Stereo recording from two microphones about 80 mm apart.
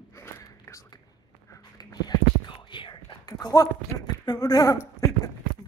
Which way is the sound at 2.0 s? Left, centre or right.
Left.